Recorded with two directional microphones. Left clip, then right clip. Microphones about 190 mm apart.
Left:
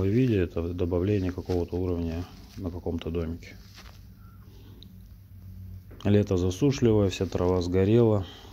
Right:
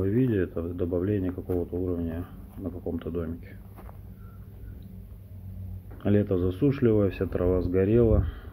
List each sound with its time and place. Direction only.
0.0 s speech: 30° left (ahead or behind)
6.0 s speech: 25° left (ahead or behind)